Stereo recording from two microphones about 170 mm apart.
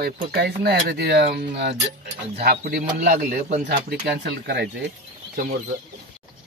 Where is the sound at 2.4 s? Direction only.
60° right (ahead or behind).